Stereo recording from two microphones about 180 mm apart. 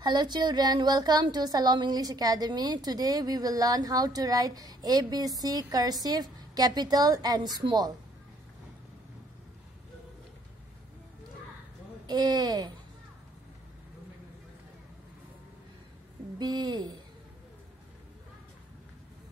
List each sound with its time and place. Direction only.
0.0 s a woman's voice: 25° right (ahead or behind)
12.1 s a woman's voice: 20° right (ahead or behind)
16.3 s a woman's voice: 25° right (ahead or behind)